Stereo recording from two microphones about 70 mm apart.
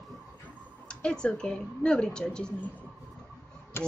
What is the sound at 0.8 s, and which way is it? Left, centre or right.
A woman's voice, centre.